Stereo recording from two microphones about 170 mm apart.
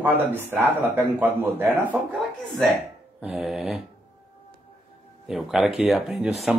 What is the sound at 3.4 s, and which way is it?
Speech, centre (ahead or behind).